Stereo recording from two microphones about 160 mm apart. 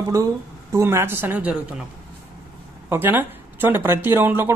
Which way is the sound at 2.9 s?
15° right (ahead or behind).